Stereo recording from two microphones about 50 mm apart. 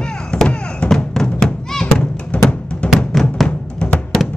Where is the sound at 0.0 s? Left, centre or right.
Centre.